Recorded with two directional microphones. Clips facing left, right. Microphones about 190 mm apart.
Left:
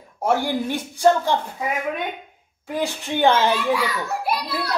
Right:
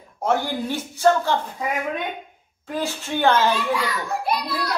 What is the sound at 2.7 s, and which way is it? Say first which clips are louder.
Speech: left 1 dB; 15° left (ahead or behind).